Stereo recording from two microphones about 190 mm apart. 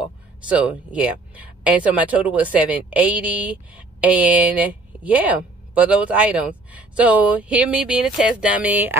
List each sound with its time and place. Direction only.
0.0 s speech: 5° right (ahead or behind)